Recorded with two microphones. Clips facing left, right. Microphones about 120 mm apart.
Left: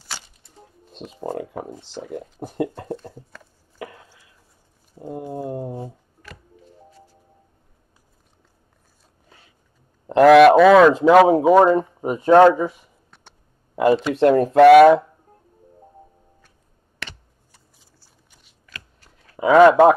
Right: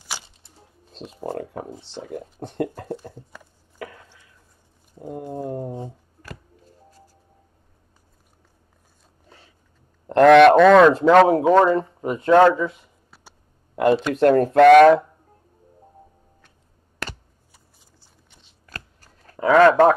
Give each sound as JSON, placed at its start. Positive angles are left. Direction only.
{"t": 0.9, "sound": "speech", "side_deg": 5}
{"t": 1.2, "sound": "speech", "side_deg": 15}
{"t": 2.0, "sound": "speech", "side_deg": -15}
{"t": 2.3, "sound": "speech", "side_deg": 5}
{"t": 3.7, "sound": "a sound", "side_deg": 5}
{"t": 5.1, "sound": "speech", "side_deg": 5}
{"t": 6.2, "sound": "music", "side_deg": -40}
{"t": 10.0, "sound": "speech", "side_deg": 5}
{"t": 13.1, "sound": "a sound", "side_deg": -5}
{"t": 13.7, "sound": "speech", "side_deg": 0}
{"t": 18.7, "sound": "shuffling cards", "side_deg": -40}
{"t": 19.3, "sound": "speech", "side_deg": 10}